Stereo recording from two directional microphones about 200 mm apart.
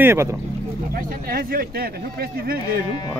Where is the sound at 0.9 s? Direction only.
45° right (ahead or behind).